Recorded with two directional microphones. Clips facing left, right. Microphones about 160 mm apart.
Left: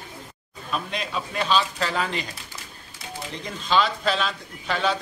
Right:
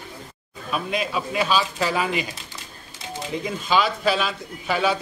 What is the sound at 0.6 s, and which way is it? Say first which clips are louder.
A man's voice: right 4 dB; 5° right (ahead or behind).